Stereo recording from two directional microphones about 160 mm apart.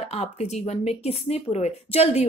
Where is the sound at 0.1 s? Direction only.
40° left (ahead or behind).